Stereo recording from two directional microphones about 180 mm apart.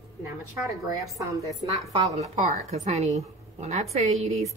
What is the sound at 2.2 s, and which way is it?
Speech, 40° right (ahead or behind).